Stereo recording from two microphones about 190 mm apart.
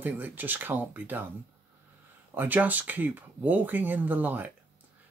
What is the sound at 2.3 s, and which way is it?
Speech, 10° right (ahead or behind).